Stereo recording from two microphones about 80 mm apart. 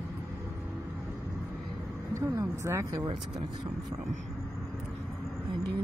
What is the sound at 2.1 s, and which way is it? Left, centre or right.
Vehicle, right.